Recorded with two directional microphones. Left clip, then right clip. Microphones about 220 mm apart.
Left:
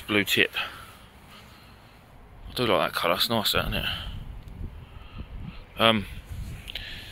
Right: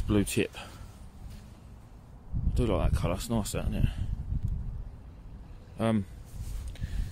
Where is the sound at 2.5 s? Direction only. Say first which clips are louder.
Left 8 dB; 5° right (ahead or behind).